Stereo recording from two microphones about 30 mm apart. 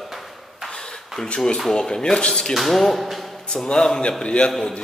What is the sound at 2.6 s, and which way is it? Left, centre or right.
Speech, centre.